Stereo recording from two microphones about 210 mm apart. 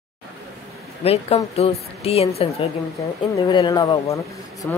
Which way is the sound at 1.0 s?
30° left (ahead or behind).